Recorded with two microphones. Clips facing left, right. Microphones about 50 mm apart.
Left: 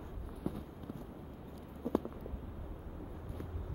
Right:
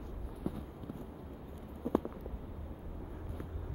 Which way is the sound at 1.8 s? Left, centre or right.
Right.